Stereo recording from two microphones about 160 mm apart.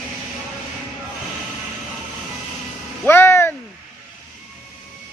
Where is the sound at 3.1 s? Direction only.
15° left (ahead or behind).